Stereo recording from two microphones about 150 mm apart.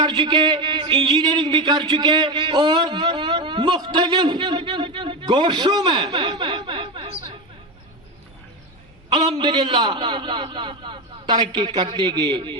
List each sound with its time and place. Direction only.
0.2 s speech: 30° right (ahead or behind)
9.1 s a man's voice: 30° right (ahead or behind)